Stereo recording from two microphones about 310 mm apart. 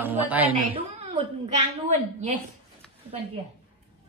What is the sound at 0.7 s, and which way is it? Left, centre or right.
A woman's voice, centre.